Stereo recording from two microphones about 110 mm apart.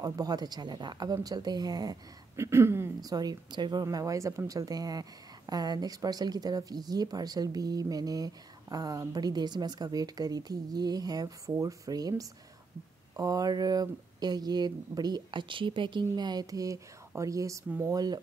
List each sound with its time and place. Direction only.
0.0 s speech: 35° right (ahead or behind)
2.3 s speech: 25° right (ahead or behind)
3.0 s speech: 35° right (ahead or behind)
3.8 s speech: 30° right (ahead or behind)